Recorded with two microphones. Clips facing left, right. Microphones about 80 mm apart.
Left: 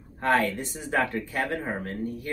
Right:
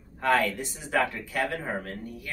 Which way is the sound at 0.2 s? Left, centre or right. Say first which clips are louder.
Left 1 dB; left.